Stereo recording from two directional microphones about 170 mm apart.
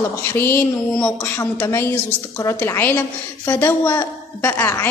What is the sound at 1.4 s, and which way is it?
A woman's voice, 15° left (ahead or behind).